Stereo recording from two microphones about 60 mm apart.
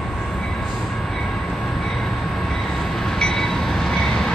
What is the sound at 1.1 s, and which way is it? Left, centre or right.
Train, centre.